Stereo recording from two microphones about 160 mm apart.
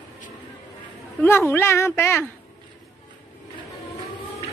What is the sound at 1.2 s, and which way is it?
Speech, 15° left (ahead or behind).